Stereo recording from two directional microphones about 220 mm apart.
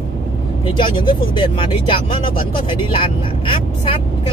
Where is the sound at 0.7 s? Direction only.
20° left (ahead or behind).